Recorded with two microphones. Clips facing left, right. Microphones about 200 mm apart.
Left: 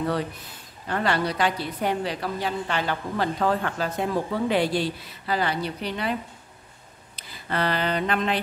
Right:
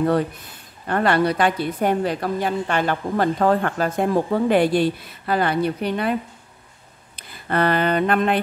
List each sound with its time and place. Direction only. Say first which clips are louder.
0.8 s a woman's voice: right 6 dB; 55° right (ahead or behind)
7.2 s speech: right 6 dB; 55° right (ahead or behind)